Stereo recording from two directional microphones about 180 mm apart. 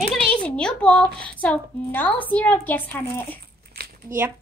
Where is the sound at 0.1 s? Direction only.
5° left (ahead or behind).